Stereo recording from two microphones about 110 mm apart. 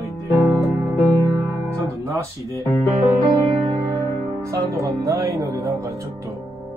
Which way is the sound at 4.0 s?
30° right (ahead or behind).